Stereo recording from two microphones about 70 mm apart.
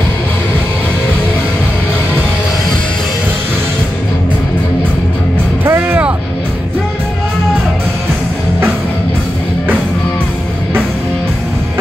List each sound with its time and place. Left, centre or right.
5.6 s music: right